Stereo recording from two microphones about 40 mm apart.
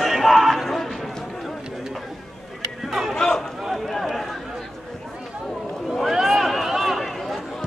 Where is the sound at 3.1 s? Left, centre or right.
Centre.